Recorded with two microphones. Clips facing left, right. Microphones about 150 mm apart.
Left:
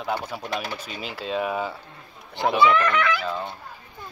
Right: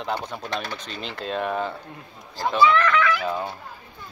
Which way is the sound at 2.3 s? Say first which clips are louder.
Even; 60° left (ahead or behind).